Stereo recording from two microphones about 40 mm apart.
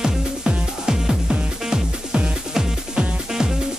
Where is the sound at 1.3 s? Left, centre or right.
Right.